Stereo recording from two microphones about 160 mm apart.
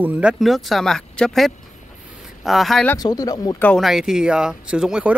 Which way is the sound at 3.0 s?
25° left (ahead or behind).